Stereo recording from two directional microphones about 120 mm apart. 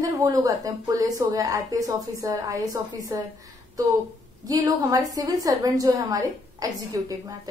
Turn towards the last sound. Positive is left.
turn(degrees=-30)  # may be behind; listen again after turning